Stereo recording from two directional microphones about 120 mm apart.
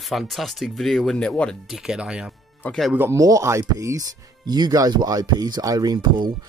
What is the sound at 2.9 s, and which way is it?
Speech, 20° right (ahead or behind).